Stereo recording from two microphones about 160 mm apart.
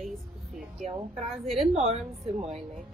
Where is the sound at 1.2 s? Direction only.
Centre (ahead or behind).